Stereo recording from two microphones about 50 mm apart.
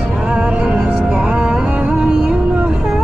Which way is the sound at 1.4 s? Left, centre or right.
Right.